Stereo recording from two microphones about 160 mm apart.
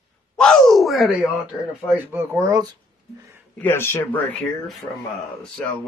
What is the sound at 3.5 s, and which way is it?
Speech, 15° left (ahead or behind).